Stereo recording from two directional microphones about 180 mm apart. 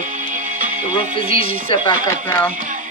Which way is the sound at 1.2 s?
30° left (ahead or behind).